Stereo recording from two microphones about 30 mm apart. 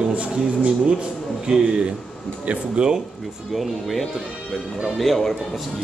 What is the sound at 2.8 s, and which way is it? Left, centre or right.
Speech, right.